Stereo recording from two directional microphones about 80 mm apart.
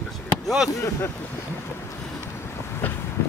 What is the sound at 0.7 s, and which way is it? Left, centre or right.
Speech, left.